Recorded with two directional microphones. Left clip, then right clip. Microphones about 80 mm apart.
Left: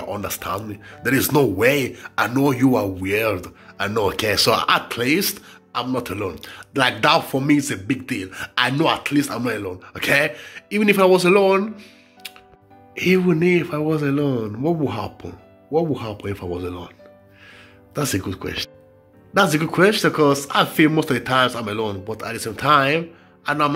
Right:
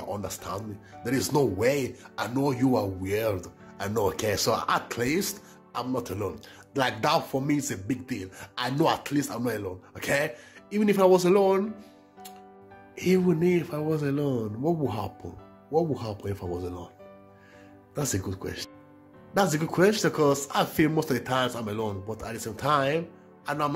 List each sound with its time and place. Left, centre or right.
0.0 s speech: right
6.7 s speech: right
8.4 s speech: right
8.7 s speech: right
9.3 s speech: right
12.9 s speech: right
17.9 s speech: right
19.3 s speech: right